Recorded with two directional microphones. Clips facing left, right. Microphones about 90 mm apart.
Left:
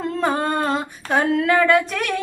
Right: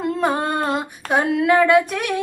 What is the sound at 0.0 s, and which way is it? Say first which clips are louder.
Female singing: right 1 dB; 15° right (ahead or behind).